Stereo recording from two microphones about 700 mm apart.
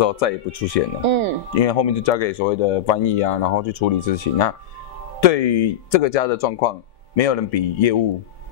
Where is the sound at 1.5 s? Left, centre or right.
Left.